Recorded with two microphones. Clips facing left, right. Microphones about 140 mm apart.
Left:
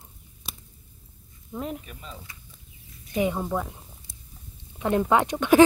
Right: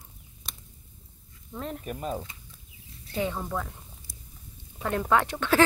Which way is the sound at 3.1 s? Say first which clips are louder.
Left 5 dB; 15° left (ahead or behind).